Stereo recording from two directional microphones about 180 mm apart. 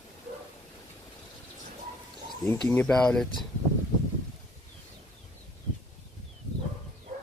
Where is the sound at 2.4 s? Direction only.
15° left (ahead or behind).